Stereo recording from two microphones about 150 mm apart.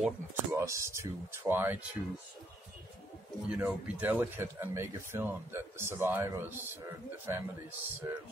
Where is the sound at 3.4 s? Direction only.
10° right (ahead or behind).